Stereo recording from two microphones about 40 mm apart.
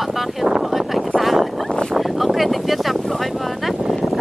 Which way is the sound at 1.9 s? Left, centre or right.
Centre.